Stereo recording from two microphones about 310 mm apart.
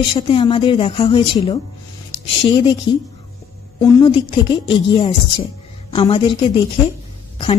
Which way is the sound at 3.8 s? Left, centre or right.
Centre.